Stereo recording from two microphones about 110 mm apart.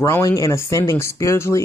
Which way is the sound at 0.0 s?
30° left (ahead or behind).